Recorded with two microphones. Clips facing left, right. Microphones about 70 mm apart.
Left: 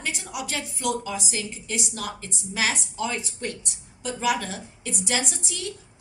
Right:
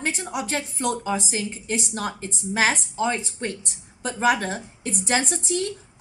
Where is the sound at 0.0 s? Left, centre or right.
Right.